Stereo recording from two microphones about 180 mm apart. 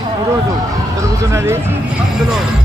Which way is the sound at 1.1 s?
15° right (ahead or behind).